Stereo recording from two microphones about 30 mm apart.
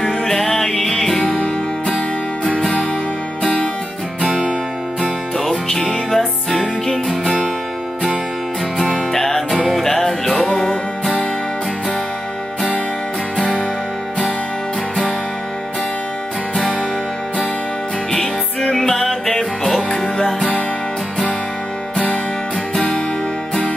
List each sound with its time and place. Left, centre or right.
0.0 s music: centre
1.1 s music: left
5.4 s music: centre
8.7 s music: centre
9.1 s music: centre
18.1 s music: centre